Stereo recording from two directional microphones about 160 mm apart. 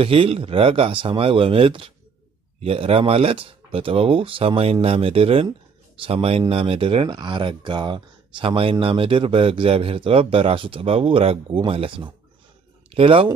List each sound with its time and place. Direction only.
0.0 s speech: 35° right (ahead or behind)